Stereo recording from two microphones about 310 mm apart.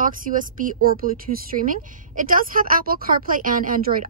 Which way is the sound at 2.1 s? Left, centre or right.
Right.